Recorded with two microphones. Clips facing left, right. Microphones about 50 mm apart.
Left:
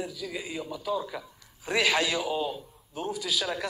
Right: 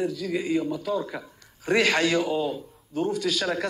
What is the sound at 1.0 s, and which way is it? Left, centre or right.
Speech, centre.